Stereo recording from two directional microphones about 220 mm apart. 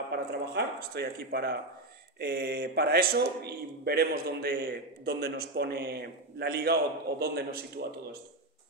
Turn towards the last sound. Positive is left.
turn(degrees=-45)  # may be behind; listen again after turning